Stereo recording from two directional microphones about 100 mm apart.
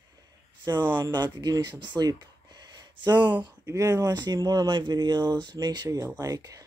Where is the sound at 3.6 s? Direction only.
35° right (ahead or behind).